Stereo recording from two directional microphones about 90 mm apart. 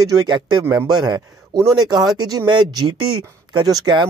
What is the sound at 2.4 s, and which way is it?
Speech, 55° right (ahead or behind).